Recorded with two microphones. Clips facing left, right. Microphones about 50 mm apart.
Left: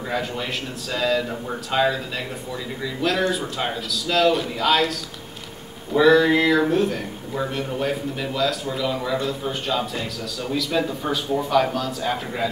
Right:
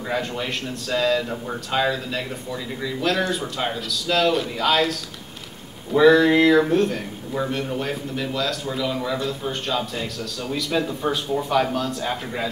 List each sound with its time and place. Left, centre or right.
0.1 s a man's voice: centre
5.9 s a man's voice: centre